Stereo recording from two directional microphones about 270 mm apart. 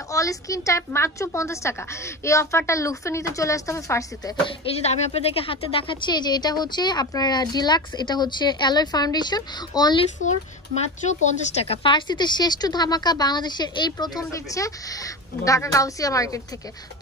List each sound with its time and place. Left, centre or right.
0.1 s speech: centre
4.5 s speech: left
10.2 s speech: left